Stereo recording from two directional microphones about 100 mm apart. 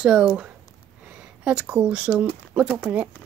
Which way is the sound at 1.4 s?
10° right (ahead or behind).